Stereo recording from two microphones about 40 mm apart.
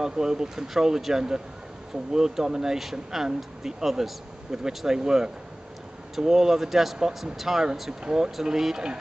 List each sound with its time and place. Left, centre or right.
0.0 s speech: centre
8.0 s speech: centre